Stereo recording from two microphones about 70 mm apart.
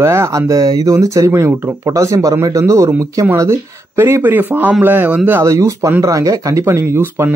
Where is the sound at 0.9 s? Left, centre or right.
Right.